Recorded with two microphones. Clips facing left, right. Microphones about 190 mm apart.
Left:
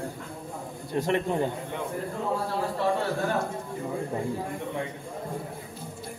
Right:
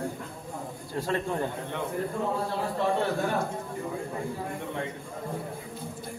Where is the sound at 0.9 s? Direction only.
20° left (ahead or behind).